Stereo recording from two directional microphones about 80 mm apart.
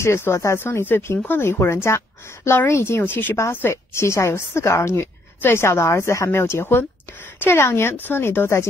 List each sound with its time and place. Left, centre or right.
0.0 s a woman's voice: left
3.3 s a woman's voice: left